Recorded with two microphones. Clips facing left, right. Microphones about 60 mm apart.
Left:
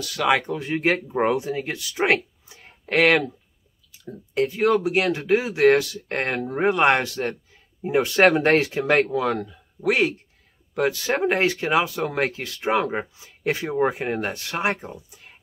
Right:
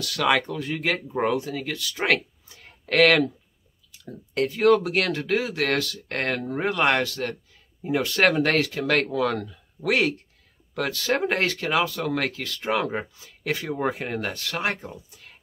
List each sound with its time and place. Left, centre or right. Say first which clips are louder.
0.0 s speech: left 1 dB; centre
0.5 s speech: left 4 dB; left; by 10.1 s centre
10.7 s speech: left 2 dB; centre